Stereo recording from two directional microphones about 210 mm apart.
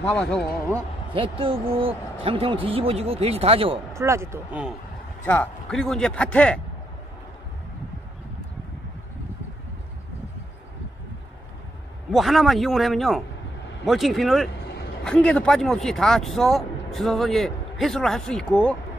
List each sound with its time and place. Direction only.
0.0 s speech: 5° left (ahead or behind)
1.1 s speech: 25° right (ahead or behind)
3.9 s speech: 15° right (ahead or behind)
5.2 s speech: 5° left (ahead or behind)
12.1 s speech: centre (ahead or behind)